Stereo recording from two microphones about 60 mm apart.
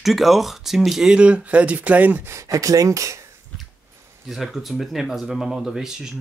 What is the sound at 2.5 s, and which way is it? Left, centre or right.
Speech, right.